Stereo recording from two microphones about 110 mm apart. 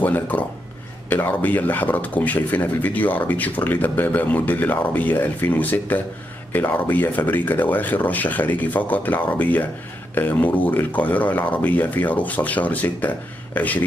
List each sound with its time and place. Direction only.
0.0 s speech: 15° left (ahead or behind)